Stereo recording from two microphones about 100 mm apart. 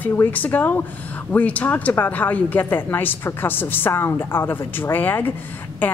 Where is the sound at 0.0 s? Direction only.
20° left (ahead or behind).